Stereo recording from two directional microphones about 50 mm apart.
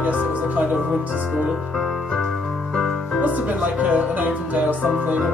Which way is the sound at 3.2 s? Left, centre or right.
Right.